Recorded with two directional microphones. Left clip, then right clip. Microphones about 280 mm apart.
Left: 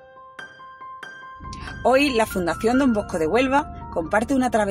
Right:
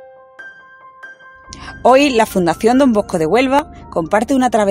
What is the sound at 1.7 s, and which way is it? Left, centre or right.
Speech, right.